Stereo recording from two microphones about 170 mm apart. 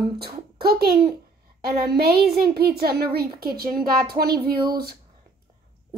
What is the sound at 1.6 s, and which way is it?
A woman's voice, 65° right (ahead or behind).